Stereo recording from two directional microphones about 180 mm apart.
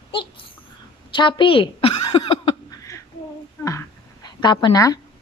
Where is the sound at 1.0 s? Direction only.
25° left (ahead or behind).